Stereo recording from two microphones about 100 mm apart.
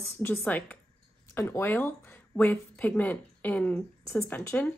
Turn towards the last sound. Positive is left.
turn(degrees=20)  # may be behind; listen again after turning